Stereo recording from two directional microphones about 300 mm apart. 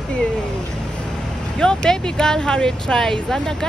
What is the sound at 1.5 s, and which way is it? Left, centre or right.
Speech, centre.